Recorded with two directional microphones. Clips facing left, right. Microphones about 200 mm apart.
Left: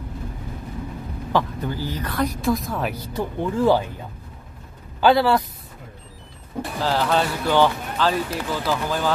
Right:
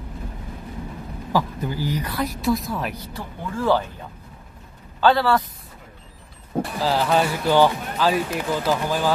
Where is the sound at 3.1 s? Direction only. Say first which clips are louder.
Left 7 dB; 15° left (ahead or behind).